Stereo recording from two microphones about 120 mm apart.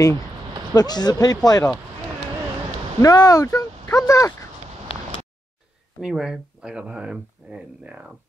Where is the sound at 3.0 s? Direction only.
30° left (ahead or behind).